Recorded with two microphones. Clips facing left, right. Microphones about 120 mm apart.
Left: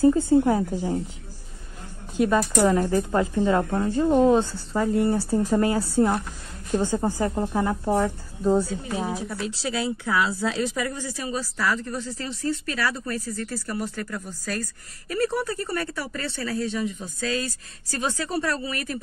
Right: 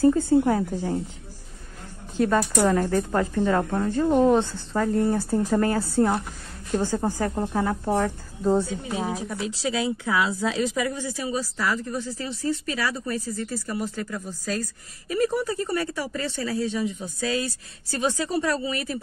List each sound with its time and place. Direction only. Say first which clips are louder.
0.0 s speech: left 1 dB; 15° left (ahead or behind)
2.1 s a woman's voice: left 1 dB; 10° left (ahead or behind)
8.6 s a woman's voice: even; 20° right (ahead or behind)